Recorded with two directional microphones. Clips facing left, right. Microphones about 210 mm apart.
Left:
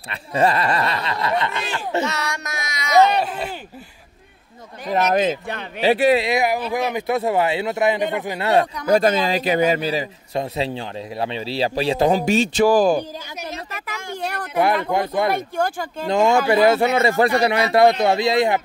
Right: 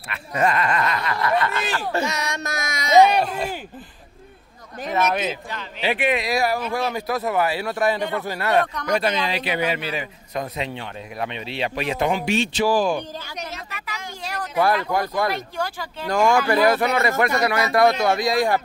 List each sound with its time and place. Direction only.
0.1 s a man's voice: 30° left (ahead or behind)
2.0 s speech: 20° right (ahead or behind)
2.6 s a sound: 50° right (ahead or behind)
2.9 s a sound: 15° right (ahead or behind)
3.2 s speech: 5° left (ahead or behind)
4.8 s a man's voice: 40° left (ahead or behind)
6.2 s a man's voice: 20° left (ahead or behind)
8.9 s a man's voice: 45° left (ahead or behind); by 14.6 s 60° left (ahead or behind)
14.9 s a man's voice: 20° left (ahead or behind)
15.3 s speech: 50° left (ahead or behind)
16.1 s a man's voice: 25° left (ahead or behind)